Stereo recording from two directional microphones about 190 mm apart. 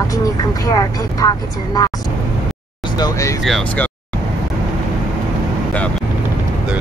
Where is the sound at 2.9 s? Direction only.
20° left (ahead or behind).